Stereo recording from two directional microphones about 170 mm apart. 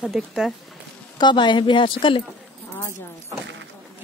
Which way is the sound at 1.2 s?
25° left (ahead or behind).